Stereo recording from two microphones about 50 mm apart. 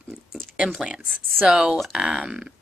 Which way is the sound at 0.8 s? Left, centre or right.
Centre.